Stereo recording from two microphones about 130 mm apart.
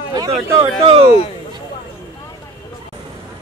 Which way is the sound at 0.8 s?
45° right (ahead or behind).